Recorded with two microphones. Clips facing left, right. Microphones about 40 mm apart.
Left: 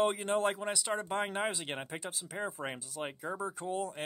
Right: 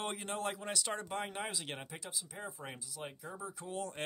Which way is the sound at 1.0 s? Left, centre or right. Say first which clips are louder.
Left 6 dB; left.